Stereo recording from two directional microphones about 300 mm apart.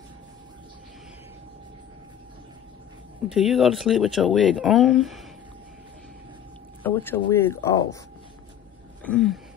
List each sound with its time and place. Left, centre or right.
3.3 s speech: centre
6.8 s speech: centre
9.0 s speech: centre